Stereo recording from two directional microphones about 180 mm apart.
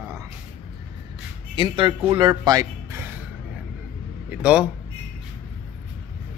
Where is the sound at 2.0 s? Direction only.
25° right (ahead or behind).